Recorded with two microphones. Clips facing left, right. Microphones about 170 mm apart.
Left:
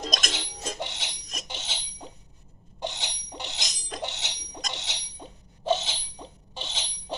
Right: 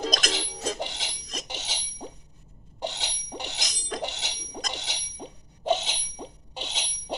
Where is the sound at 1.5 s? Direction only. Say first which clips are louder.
Right 1 dB; 10° right (ahead or behind).